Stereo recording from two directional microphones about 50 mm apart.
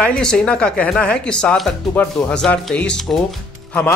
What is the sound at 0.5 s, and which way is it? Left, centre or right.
Speech, left.